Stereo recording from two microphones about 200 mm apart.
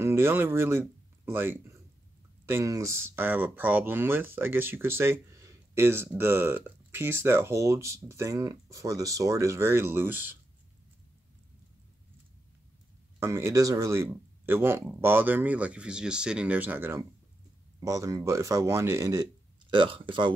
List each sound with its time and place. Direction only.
0.0 s speech: 10° right (ahead or behind)
13.2 s speech: 15° right (ahead or behind)